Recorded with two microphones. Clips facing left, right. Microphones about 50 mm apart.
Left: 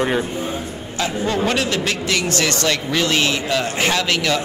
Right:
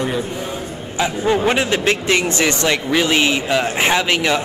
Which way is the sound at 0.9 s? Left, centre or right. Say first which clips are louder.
Right 3 dB; centre.